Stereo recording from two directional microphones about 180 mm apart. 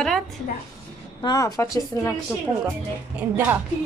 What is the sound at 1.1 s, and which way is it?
Speech, 20° left (ahead or behind).